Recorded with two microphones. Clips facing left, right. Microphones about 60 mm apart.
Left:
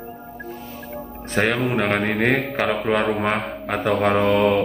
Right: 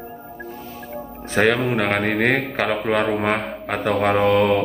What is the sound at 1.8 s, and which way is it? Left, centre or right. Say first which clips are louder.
A man's voice: even; right.